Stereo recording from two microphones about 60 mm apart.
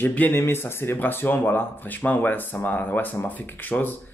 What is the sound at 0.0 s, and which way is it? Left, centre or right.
Speech, left.